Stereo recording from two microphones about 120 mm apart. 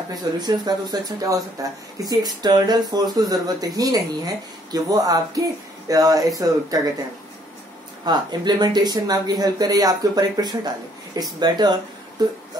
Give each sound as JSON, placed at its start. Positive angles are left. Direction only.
{"t": 0.1, "sound": "speech", "side_deg": -35}
{"t": 8.0, "sound": "speech", "side_deg": -35}